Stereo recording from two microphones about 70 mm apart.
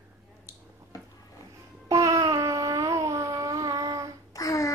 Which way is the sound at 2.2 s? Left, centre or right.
Right.